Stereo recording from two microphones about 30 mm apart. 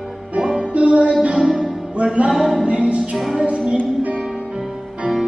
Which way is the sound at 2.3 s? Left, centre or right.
Centre.